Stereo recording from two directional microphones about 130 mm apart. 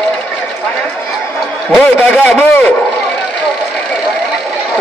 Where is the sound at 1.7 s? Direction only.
10° left (ahead or behind).